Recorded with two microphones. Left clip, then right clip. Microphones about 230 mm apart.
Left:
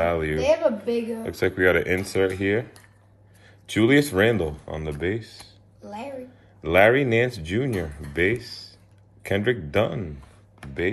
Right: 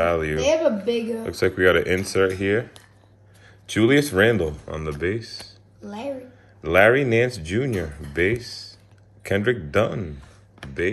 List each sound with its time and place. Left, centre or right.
0.0 s a sound: centre
0.4 s speech: right
1.2 s speech: centre
5.3 s a sound: right
5.9 s speech: right
6.6 s speech: centre
10.6 s computer keyboard: right